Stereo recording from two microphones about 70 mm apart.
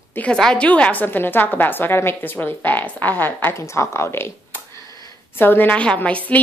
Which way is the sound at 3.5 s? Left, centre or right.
Left.